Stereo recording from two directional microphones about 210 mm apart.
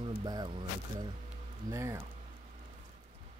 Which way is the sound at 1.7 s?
15° right (ahead or behind).